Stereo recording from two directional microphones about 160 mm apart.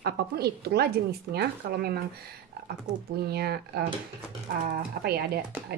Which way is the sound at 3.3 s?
85° right.